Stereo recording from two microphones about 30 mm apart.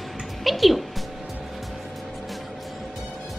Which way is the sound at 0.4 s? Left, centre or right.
Centre.